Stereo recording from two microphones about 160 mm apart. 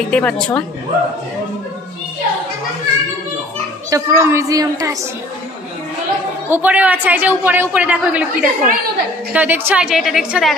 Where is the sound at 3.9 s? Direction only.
15° right (ahead or behind).